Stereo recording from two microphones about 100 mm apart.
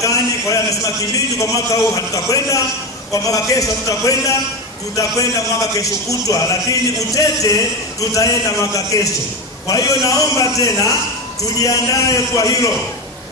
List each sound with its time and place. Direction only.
0.0 s a man's voice: 35° left (ahead or behind)